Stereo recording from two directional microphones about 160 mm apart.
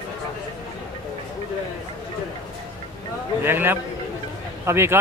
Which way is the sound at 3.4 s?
15° right (ahead or behind).